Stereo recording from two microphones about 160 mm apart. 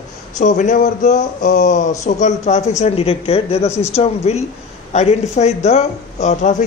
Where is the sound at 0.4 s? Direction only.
50° left (ahead or behind).